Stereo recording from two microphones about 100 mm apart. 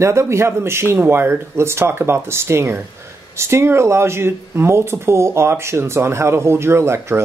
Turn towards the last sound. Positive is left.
turn(degrees=-25)  # may be behind; listen again after turning